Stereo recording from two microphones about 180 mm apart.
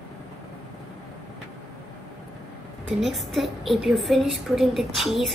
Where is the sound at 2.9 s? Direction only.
Centre (ahead or behind).